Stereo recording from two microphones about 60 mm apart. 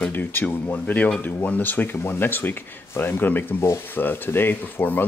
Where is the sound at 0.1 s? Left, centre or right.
Left.